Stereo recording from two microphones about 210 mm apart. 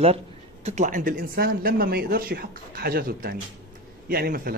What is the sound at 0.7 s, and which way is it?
A man's voice, 35° right (ahead or behind).